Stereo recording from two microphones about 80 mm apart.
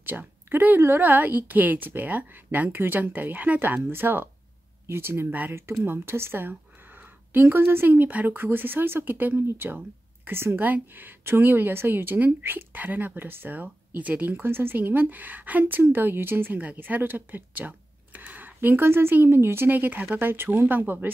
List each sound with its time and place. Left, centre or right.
0.0 s speech: right